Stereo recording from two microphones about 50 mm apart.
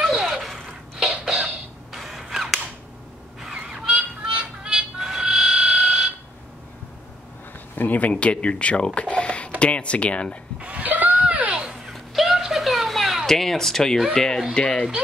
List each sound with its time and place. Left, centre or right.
0.1 s a sound: centre
3.5 s honk: centre
7.7 s speech: left
8.1 s speech: left
10.6 s chuckle: right
11.9 s a sound: centre
14.5 s speech: centre